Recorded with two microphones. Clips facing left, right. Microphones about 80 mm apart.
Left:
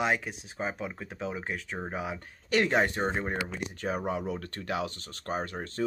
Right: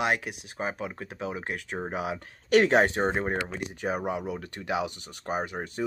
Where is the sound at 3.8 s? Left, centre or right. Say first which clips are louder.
Right 1 dB; centre.